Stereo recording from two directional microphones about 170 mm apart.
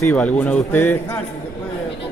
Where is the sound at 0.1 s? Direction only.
5° left (ahead or behind).